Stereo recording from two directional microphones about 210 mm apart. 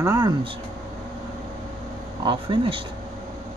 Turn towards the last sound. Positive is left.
turn(degrees=-25)  # may be behind; listen again after turning